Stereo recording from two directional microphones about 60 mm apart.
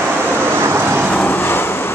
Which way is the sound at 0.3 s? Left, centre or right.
Right.